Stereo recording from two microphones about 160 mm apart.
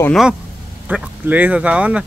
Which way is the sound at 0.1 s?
5° right (ahead or behind).